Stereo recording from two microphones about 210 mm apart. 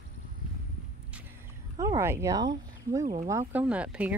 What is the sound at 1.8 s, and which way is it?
Speech, 15° right (ahead or behind).